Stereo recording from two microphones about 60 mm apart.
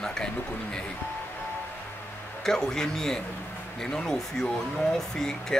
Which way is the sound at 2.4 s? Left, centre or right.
Centre.